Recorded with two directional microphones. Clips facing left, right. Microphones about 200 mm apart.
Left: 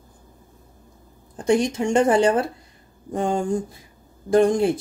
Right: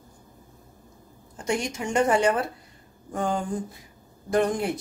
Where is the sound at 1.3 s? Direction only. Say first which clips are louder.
Left 8 dB; 35° left (ahead or behind).